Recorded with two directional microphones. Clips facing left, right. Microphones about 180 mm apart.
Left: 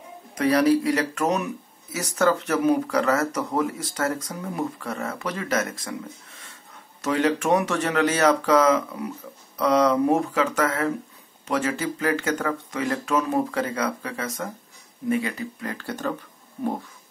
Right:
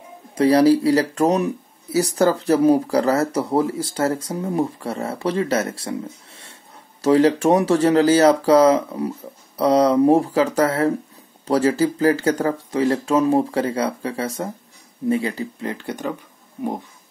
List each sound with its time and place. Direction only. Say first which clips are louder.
0.3 s speech: right 5 dB; 30° right (ahead or behind)